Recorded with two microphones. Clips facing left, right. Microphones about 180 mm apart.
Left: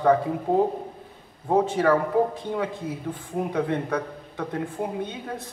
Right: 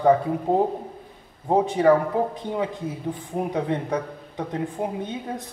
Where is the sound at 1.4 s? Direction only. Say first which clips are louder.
Right 2 dB; 15° right (ahead or behind).